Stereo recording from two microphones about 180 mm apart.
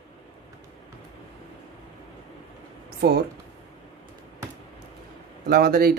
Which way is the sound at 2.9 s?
60° right (ahead or behind).